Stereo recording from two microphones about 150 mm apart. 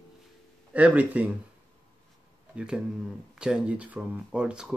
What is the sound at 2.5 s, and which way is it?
Speech, 5° right (ahead or behind).